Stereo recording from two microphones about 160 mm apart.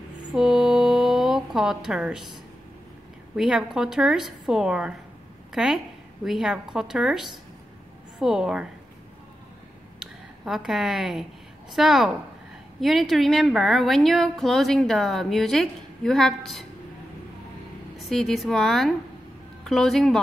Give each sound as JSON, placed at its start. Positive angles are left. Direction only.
{"t": 0.3, "sound": "a sound", "side_deg": -5}
{"t": 3.3, "sound": "a woman's voice", "side_deg": -5}
{"t": 10.4, "sound": "a woman's voice", "side_deg": -5}
{"t": 17.9, "sound": "a woman's voice", "side_deg": 0}